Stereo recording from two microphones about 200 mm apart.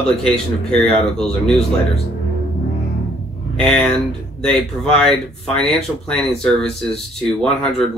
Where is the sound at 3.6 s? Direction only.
Centre (ahead or behind).